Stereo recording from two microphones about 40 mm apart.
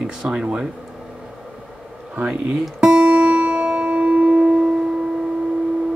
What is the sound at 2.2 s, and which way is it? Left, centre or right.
Speech, right.